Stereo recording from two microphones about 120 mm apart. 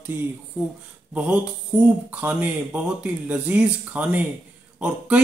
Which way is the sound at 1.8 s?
10° right (ahead or behind).